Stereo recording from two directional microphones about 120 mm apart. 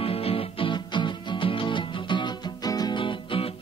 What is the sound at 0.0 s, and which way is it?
Music, 55° left (ahead or behind).